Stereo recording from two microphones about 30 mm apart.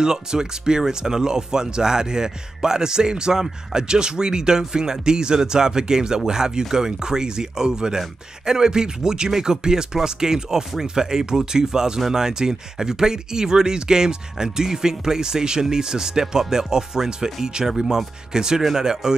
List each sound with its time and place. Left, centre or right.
0.0 s speech: right